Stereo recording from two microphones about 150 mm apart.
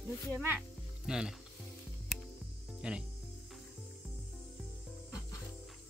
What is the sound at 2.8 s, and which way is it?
Speech, 5° right (ahead or behind).